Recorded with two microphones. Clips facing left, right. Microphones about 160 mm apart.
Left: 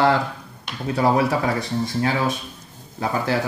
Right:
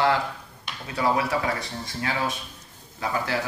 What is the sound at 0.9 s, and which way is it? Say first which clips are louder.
Speech: left 5 dB; 35° left (ahead or behind).